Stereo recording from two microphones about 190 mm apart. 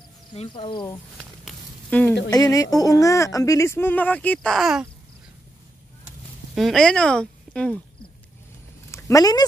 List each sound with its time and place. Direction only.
0.3 s speech: 25° left (ahead or behind)
1.1 s a sound: centre (ahead or behind)
2.3 s speech: 20° left (ahead or behind); by 4.8 s centre (ahead or behind)
6.5 s speech: centre (ahead or behind)
8.9 s speech: 15° left (ahead or behind)